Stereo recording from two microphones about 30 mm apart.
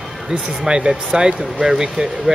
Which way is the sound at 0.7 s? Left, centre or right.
Right.